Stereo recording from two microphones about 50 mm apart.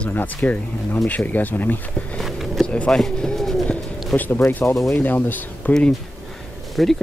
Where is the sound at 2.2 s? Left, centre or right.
Centre.